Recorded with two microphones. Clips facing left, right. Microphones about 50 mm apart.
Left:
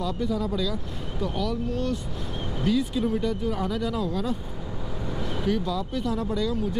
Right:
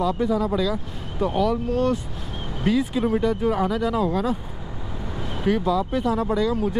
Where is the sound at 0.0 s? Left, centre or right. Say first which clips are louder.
Right 6 dB; right.